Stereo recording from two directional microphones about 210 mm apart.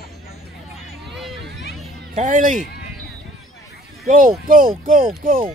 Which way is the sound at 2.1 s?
40° right (ahead or behind).